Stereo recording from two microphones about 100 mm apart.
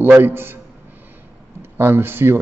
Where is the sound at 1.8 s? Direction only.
25° right (ahead or behind).